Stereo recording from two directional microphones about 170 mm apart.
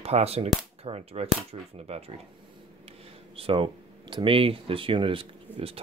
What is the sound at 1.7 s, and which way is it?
Speech, 35° right (ahead or behind).